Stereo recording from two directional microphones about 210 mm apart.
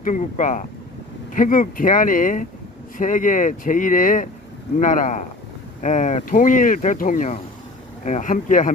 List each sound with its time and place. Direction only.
0.0 s speech: 40° left (ahead or behind)